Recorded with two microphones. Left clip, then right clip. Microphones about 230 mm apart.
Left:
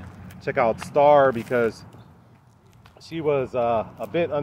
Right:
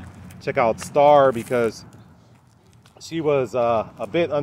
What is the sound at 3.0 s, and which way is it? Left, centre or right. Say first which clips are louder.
Speech: right 3 dB; right.